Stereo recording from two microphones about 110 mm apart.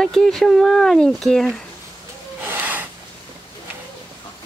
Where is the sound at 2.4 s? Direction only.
15° right (ahead or behind).